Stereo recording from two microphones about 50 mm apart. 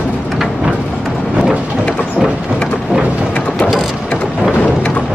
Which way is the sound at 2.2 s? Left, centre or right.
Centre.